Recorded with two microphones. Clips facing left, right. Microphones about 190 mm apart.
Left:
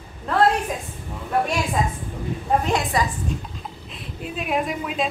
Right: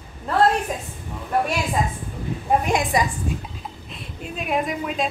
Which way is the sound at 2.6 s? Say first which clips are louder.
Right 1 dB; 15° right (ahead or behind).